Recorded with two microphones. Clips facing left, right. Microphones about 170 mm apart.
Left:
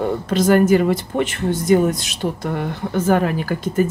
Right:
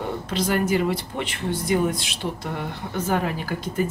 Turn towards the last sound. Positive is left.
turn(degrees=50)  # may be behind; listen again after turning